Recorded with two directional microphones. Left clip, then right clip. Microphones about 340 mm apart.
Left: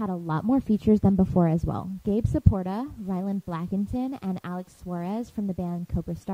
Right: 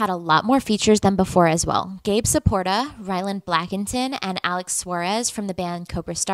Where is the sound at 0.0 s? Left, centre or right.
Centre.